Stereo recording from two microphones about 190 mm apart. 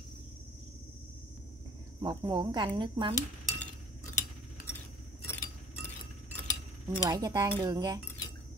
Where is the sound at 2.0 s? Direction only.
25° right (ahead or behind).